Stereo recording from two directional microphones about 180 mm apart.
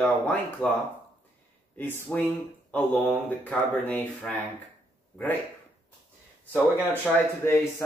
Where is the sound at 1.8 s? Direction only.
10° left (ahead or behind).